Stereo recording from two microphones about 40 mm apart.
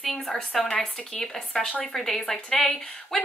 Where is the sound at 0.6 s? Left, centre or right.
Left.